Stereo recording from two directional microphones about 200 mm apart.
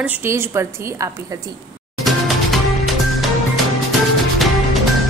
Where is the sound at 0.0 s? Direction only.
10° right (ahead or behind).